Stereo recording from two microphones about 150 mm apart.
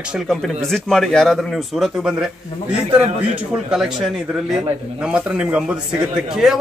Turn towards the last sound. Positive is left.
turn(degrees=-5)  # may be behind; listen again after turning